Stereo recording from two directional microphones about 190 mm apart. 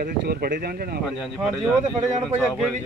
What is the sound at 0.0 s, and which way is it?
Speech, 55° right (ahead or behind).